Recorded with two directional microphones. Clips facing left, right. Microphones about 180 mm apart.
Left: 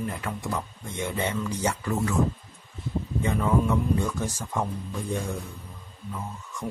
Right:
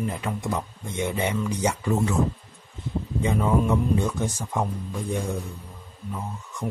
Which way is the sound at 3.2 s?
20° right (ahead or behind).